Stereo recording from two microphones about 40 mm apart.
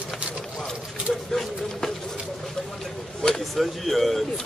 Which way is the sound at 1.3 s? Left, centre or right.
Centre.